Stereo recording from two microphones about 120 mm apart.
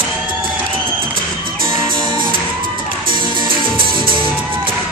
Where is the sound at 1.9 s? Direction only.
45° right (ahead or behind).